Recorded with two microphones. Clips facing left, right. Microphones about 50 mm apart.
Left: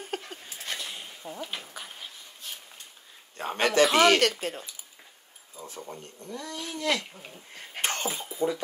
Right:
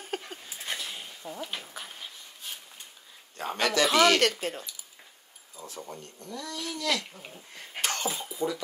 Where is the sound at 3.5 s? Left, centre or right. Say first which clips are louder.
Left 2 dB; left.